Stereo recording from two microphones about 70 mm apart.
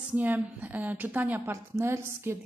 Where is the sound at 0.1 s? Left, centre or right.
Right.